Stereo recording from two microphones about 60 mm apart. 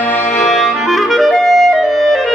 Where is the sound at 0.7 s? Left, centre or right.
Centre.